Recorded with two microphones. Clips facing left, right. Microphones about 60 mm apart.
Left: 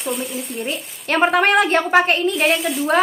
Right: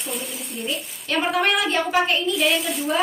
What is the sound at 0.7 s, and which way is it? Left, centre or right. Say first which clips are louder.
A woman's voice: left 3 dB; left.